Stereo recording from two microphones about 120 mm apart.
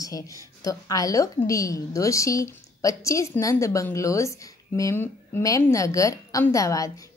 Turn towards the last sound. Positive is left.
turn(degrees=30)  # may be behind; listen again after turning